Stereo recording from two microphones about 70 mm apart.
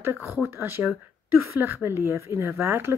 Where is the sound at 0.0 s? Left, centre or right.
Right.